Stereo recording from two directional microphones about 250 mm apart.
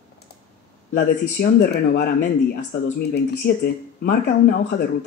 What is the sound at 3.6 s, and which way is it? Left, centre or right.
Speech, left.